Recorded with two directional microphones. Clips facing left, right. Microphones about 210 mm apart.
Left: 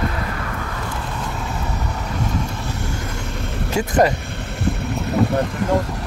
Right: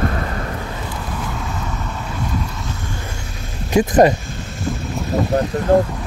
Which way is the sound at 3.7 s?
20° right (ahead or behind).